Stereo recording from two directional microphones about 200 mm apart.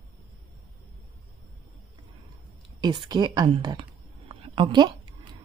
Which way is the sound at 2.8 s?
20° right (ahead or behind).